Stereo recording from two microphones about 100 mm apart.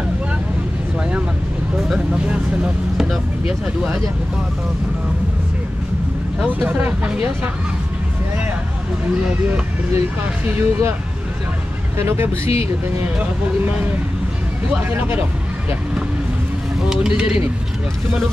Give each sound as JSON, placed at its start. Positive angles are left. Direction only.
{"t": 1.8, "sound": "speech", "side_deg": -10}
{"t": 6.6, "sound": "speech", "side_deg": -15}
{"t": 9.5, "sound": "speech", "side_deg": -20}
{"t": 12.0, "sound": "speech", "side_deg": -25}
{"t": 14.9, "sound": "speech", "side_deg": -20}
{"t": 17.2, "sound": "speech", "side_deg": -10}